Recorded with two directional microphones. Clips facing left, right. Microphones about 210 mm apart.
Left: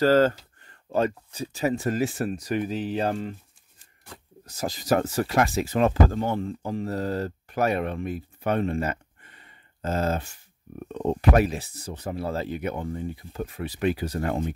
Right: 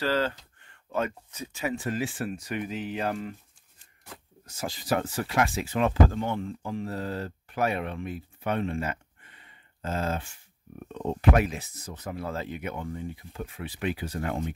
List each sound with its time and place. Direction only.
0.0 s speech: 45° left (ahead or behind)
4.5 s speech: 40° left (ahead or behind)